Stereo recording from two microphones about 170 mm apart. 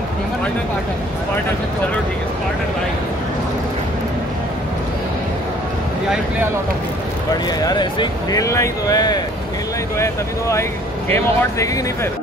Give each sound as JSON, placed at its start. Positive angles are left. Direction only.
{"t": 7.6, "sound": "speech", "side_deg": 25}